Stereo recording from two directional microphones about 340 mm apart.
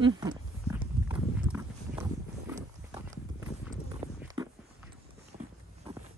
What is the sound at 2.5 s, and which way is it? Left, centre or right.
Clip-clop, centre.